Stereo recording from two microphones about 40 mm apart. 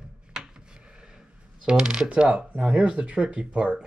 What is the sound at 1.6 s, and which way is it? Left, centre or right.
Speech, centre.